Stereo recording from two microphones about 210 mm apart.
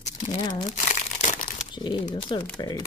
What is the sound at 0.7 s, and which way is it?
Crumpling, 35° left (ahead or behind).